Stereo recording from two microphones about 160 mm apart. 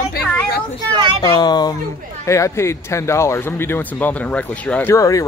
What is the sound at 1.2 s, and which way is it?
Speech, 25° left (ahead or behind).